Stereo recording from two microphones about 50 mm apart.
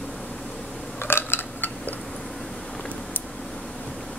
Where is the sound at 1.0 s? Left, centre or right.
Left.